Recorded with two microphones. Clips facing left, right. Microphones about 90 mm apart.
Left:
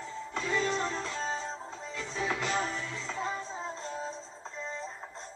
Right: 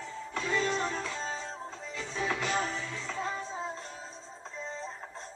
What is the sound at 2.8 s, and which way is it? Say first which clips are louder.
Music: even; centre (ahead or behind).